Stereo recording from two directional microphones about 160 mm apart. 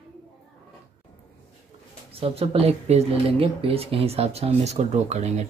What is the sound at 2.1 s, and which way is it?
Speech, 35° right (ahead or behind).